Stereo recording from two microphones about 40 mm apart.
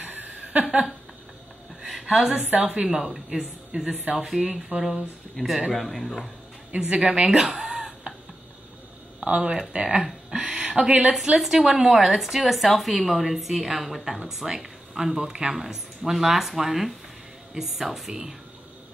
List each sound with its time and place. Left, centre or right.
0.0 s a sound: right
2.0 s a woman's voice: right
3.3 s a woman's voice: centre
5.7 s speech: centre
6.7 s a woman's voice: right
7.3 s speech: centre
7.6 s a sound: right
9.3 s speech: centre
10.5 s speech: right
11.2 s a woman's voice: centre
15.5 s a woman's voice: centre